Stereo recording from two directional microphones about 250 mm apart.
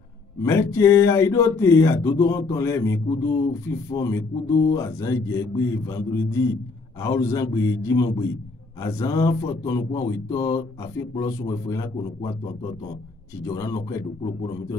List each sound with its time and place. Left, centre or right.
0.4 s speech: centre
13.5 s speech: centre